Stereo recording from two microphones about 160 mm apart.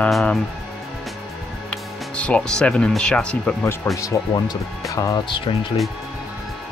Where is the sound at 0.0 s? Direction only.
5° left (ahead or behind).